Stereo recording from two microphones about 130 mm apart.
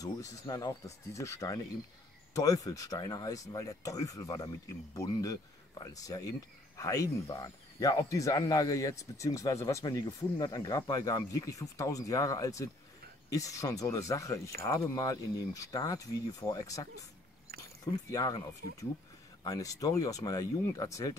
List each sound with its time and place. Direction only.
0.0 s speech: 25° left (ahead or behind)
18.1 s speech: 30° left (ahead or behind)